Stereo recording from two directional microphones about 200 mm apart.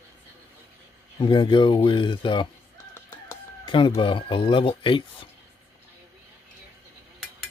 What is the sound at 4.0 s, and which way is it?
Speech, 25° left (ahead or behind).